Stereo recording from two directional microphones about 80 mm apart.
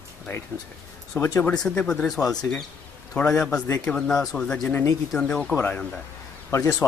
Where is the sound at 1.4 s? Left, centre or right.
Centre.